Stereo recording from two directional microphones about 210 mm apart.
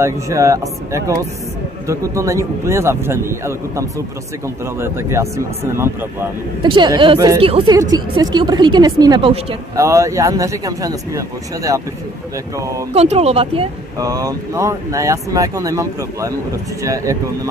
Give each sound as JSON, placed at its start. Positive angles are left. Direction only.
{"t": 0.0, "sound": "a woman's voice", "side_deg": -15}
{"t": 9.8, "sound": "speech", "side_deg": -15}
{"t": 12.9, "sound": "a woman's voice", "side_deg": -30}
{"t": 13.9, "sound": "speech", "side_deg": -15}